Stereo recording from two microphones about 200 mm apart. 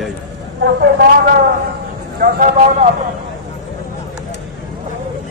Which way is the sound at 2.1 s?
40° right (ahead or behind).